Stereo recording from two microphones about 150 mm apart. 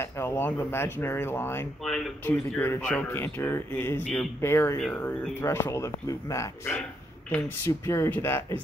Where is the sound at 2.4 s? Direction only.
15° left (ahead or behind).